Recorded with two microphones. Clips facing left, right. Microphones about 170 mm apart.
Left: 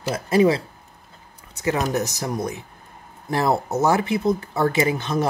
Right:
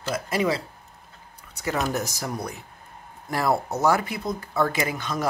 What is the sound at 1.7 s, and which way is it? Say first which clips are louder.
Speech: left 4 dB; 20° left (ahead or behind).